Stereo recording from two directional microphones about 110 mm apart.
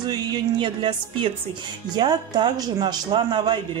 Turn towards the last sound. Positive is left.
turn(degrees=-45)  # may be behind; listen again after turning